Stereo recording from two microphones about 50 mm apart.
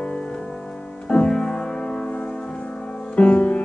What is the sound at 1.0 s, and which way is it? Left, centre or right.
Music, centre.